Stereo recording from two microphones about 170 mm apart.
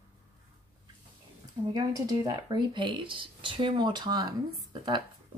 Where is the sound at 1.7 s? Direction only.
20° right (ahead or behind).